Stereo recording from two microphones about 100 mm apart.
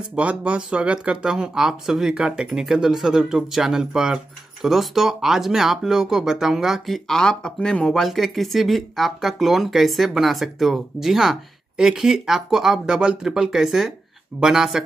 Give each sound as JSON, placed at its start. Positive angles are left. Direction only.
{"t": 0.1, "sound": "speech", "side_deg": -10}